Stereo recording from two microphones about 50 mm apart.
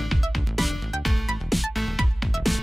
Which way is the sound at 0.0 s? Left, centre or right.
Centre.